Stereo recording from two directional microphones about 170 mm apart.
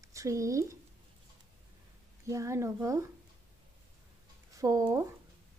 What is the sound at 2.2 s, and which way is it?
Speech, 15° right (ahead or behind).